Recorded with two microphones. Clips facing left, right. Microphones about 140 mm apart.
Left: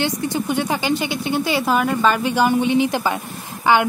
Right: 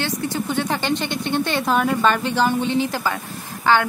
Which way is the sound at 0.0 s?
15° left (ahead or behind).